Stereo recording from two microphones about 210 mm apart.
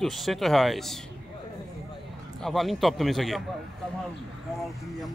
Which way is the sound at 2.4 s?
Centre (ahead or behind).